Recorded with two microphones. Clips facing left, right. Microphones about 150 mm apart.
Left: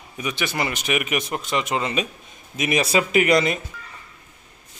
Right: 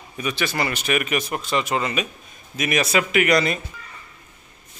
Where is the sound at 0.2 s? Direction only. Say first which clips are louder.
Right 1 dB; 15° left (ahead or behind).